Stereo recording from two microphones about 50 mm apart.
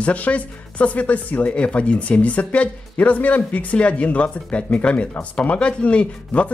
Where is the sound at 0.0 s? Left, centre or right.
Left.